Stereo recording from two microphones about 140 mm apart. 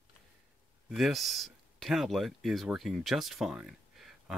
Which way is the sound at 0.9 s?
Centre (ahead or behind).